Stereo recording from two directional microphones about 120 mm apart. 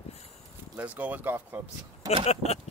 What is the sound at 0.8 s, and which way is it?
Speech, 15° right (ahead or behind).